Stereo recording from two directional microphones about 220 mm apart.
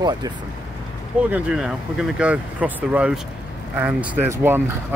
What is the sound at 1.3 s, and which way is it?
Speech, 5° right (ahead or behind).